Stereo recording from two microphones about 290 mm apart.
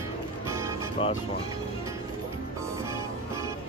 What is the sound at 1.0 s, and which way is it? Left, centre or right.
Speech, centre.